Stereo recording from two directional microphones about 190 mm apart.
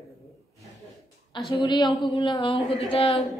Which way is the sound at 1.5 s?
25° left (ahead or behind).